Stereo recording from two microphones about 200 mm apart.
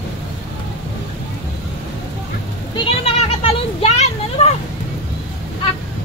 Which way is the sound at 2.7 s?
30° left (ahead or behind).